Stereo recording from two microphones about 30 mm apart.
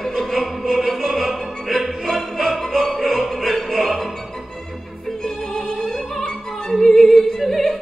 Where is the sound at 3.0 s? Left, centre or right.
Centre.